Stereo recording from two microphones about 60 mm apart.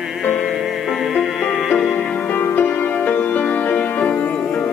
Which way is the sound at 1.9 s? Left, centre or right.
Left.